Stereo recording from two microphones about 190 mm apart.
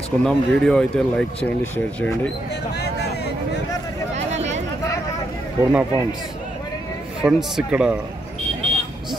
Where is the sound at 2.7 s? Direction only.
60° left (ahead or behind).